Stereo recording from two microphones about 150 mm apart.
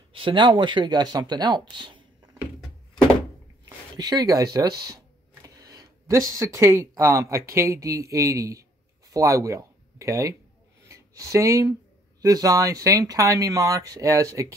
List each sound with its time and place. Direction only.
0.1 s speech: 35° right (ahead or behind)
3.6 s speech: 25° right (ahead or behind)